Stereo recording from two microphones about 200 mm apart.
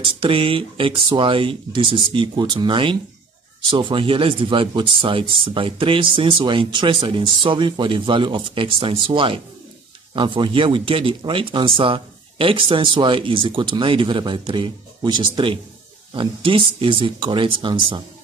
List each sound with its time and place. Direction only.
0.0 s speech: 25° right (ahead or behind)